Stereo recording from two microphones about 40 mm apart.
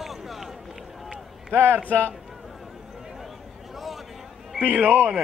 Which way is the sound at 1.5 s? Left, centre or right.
Right.